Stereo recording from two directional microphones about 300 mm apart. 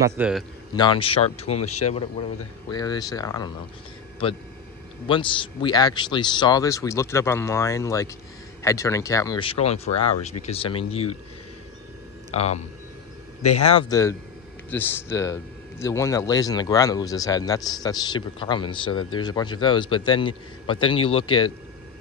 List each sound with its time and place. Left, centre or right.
0.0 s a man's voice: centre
0.7 s speech: centre
2.7 s a man's voice: centre
12.4 s a man's voice: left